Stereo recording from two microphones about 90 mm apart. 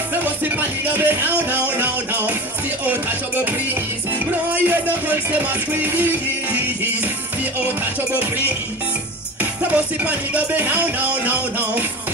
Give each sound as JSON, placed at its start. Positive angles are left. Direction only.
{"t": 0.2, "sound": "music", "side_deg": -20}
{"t": 5.7, "sound": "music", "side_deg": -20}
{"t": 7.6, "sound": "music", "side_deg": -20}
{"t": 9.4, "sound": "music", "side_deg": -15}